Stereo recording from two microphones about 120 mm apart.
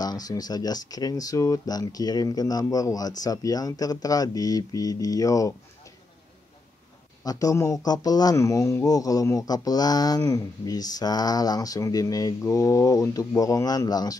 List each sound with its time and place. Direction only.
0.0 s speech: 35° left (ahead or behind)
7.2 s speech: 30° left (ahead or behind)